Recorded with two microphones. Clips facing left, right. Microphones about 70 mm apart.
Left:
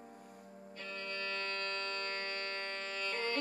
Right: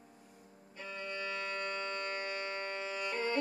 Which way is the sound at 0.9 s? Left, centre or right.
Centre.